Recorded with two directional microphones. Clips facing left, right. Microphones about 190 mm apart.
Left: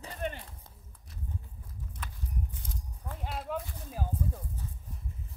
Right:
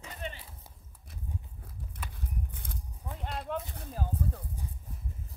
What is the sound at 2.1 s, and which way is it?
Walk, 60° right (ahead or behind).